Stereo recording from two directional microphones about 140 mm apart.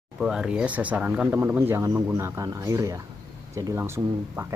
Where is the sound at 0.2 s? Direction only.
5° right (ahead or behind).